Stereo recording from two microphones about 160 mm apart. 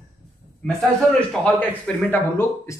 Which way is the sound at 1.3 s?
5° left (ahead or behind).